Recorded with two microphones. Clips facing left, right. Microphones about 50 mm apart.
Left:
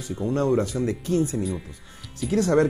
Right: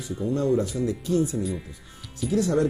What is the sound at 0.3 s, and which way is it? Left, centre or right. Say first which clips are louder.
Speech: left 1 dB; left.